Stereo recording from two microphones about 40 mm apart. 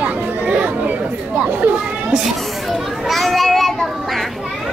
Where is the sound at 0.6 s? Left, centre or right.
Right.